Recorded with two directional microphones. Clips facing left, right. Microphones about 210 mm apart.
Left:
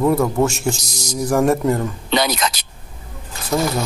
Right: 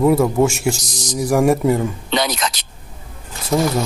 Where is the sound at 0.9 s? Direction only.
15° right (ahead or behind).